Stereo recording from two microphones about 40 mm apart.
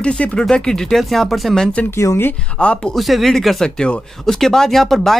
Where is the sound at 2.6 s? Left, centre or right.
Left.